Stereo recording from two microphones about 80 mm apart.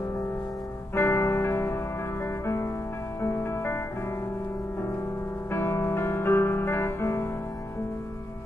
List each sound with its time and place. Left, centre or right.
0.9 s music: left
5.5 s music: left